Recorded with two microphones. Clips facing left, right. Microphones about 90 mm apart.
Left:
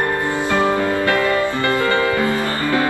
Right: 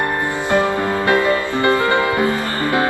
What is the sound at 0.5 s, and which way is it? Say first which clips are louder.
Music: right 1 dB; 20° right (ahead or behind).